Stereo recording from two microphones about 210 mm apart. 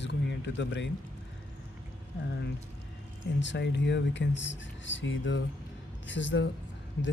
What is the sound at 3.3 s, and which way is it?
Speech, 55° left (ahead or behind).